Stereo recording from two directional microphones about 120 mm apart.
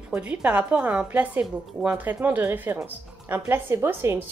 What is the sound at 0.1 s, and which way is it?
A woman's voice, 15° right (ahead or behind).